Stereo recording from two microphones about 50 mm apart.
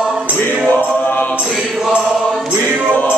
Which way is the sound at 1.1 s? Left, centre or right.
Left.